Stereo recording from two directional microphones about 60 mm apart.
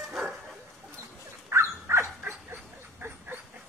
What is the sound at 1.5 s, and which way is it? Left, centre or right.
Dog, right.